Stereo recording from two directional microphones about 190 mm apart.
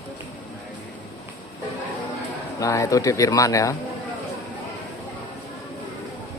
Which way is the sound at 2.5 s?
15° left (ahead or behind).